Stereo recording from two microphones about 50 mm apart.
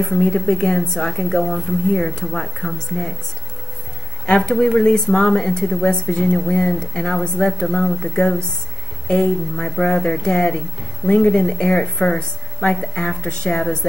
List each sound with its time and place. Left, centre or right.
0.0 s speech: centre
4.6 s speech: centre
7.2 s speech: centre